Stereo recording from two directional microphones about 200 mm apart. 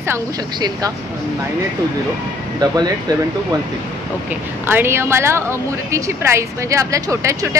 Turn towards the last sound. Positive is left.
turn(degrees=-15)  # may be behind; listen again after turning